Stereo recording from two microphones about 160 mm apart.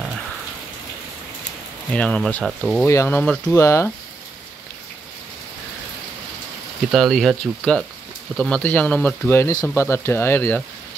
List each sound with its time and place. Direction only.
1.9 s speech: 5° left (ahead or behind)
2.8 s speech: 15° left (ahead or behind)
6.9 s speech: centre (ahead or behind)